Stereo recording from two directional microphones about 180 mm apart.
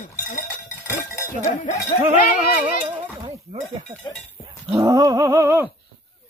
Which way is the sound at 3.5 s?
35° right (ahead or behind).